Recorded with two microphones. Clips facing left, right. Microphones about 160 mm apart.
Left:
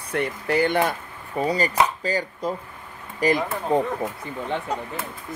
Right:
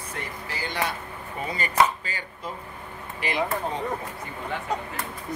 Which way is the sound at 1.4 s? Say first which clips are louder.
Left 9 dB; 35° left (ahead or behind).